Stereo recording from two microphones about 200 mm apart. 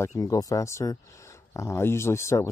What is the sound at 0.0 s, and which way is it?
Speech, 15° left (ahead or behind).